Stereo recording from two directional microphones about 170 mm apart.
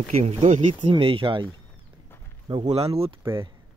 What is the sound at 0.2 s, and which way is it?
Speech, 40° right (ahead or behind).